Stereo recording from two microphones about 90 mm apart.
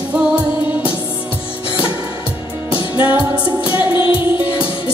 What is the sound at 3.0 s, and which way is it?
Music, 20° right (ahead or behind).